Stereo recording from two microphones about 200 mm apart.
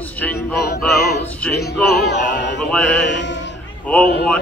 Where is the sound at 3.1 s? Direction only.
60° left (ahead or behind).